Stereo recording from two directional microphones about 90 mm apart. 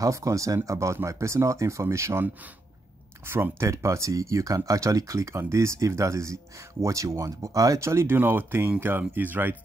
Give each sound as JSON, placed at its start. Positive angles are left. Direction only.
{"t": 0.0, "sound": "speech", "side_deg": -40}
{"t": 3.3, "sound": "speech", "side_deg": -25}
{"t": 3.6, "sound": "speech", "side_deg": -35}